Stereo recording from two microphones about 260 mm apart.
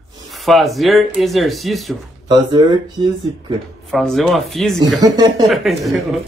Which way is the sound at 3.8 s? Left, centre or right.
Centre.